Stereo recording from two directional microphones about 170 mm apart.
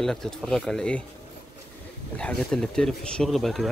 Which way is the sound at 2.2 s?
5° left (ahead or behind).